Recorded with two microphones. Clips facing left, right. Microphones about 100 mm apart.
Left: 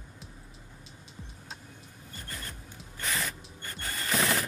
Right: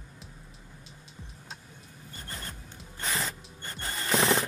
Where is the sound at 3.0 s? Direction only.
25° right (ahead or behind).